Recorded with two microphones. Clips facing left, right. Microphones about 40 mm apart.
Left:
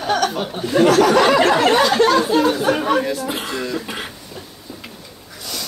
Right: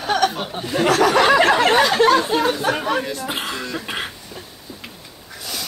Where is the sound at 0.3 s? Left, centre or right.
Centre.